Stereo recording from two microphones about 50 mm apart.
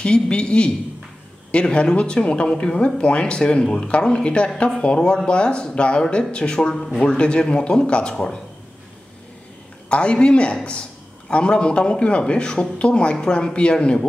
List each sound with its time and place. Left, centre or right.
0.0 s a man's voice: centre
9.8 s a man's voice: left